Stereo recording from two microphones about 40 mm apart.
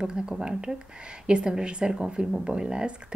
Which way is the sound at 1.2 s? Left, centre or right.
Right.